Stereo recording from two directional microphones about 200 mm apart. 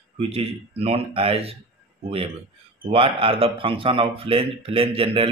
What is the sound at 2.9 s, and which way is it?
A man's voice, 25° right (ahead or behind).